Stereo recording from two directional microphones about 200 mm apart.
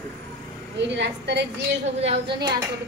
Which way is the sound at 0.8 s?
60° right (ahead or behind).